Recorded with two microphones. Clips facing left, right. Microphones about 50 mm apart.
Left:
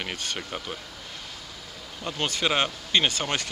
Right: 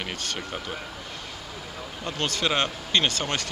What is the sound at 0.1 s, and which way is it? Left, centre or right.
Speech, centre.